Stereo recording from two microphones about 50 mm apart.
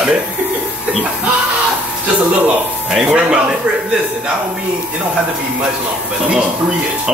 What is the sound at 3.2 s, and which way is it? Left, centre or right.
Speech, centre.